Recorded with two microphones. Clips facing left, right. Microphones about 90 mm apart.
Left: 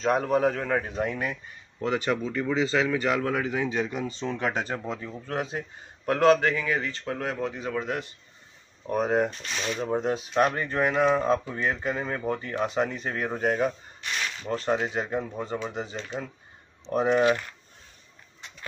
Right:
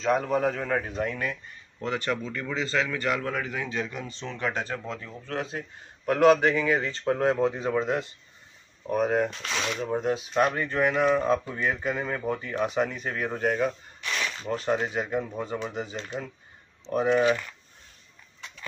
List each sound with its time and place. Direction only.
0.0 s a man's voice: 5° left (ahead or behind)
6.1 s speech: 15° right (ahead or behind)
8.8 s speech: centre (ahead or behind)
9.3 s speech: 90° right
9.9 s speech: centre (ahead or behind)